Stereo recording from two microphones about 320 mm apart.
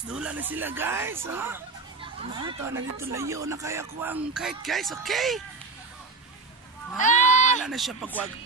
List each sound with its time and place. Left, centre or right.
0.1 s speech: centre
7.0 s a sound: left
7.6 s speech: centre